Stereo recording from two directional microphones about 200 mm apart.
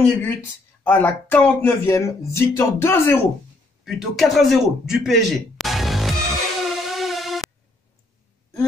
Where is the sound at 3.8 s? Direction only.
Centre (ahead or behind).